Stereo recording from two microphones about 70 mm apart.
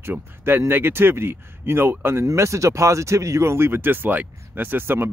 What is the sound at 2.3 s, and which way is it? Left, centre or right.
Speech, right.